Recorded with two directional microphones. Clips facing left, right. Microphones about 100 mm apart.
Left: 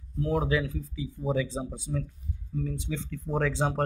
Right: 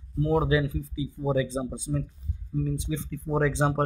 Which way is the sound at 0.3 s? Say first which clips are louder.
Right 3 dB; 10° right (ahead or behind).